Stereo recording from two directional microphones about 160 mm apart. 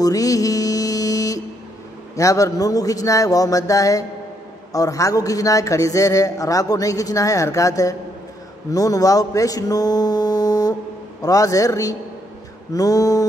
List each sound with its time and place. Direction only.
0.0 s mantra: 20° left (ahead or behind)
2.1 s a man's voice: 20° left (ahead or behind)